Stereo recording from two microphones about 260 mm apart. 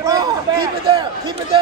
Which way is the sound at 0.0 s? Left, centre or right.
Centre.